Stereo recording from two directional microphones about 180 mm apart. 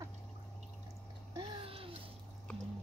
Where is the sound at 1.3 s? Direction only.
30° right (ahead or behind).